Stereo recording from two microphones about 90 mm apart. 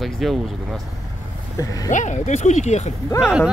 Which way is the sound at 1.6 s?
35° left (ahead or behind).